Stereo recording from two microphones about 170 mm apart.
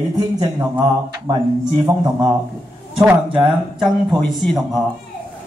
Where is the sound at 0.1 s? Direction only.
25° right (ahead or behind).